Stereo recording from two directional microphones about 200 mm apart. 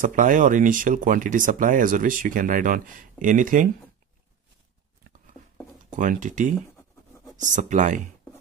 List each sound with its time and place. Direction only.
0.0 s speech: 40° right (ahead or behind)
5.9 s speech: 40° right (ahead or behind)